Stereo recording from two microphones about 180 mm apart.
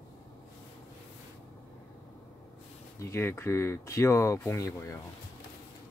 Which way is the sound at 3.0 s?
15° left (ahead or behind).